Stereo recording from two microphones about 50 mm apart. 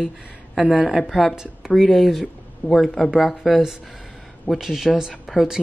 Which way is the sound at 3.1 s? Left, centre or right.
Centre.